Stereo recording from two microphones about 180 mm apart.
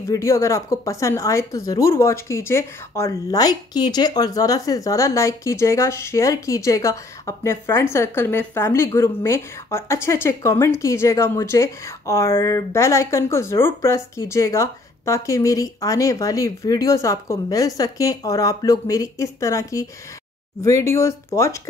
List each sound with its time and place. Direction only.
0.0 s a woman's voice: 15° left (ahead or behind)